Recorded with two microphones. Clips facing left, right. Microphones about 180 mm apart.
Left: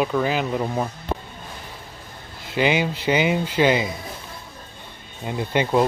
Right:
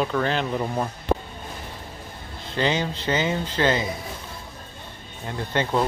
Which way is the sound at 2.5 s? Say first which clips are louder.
Left 3 dB; 10° left (ahead or behind).